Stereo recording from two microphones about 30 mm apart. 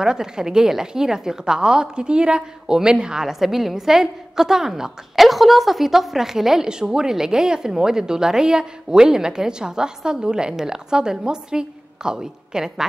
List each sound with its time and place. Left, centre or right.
0.0 s a woman's voice: right
3.3 s a woman's voice: centre
5.1 s speech: centre
6.6 s a woman's voice: right